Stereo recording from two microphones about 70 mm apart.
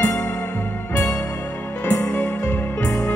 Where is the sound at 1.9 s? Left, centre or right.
Left.